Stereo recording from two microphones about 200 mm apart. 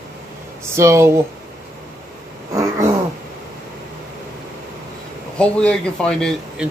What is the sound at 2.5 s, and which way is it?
Wild animals, 15° right (ahead or behind).